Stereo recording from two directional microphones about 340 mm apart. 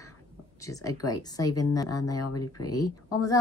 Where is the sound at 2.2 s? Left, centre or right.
Left.